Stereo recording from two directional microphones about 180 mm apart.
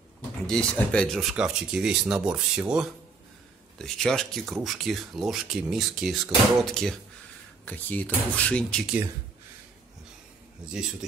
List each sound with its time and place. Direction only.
0.5 s speech: 5° left (ahead or behind)
10.6 s speech: 5° right (ahead or behind)